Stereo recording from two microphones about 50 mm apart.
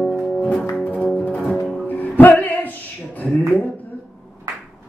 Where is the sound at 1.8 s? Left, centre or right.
Left.